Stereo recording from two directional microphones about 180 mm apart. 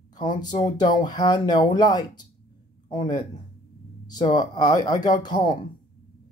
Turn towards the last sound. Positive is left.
turn(degrees=25)  # may be behind; listen again after turning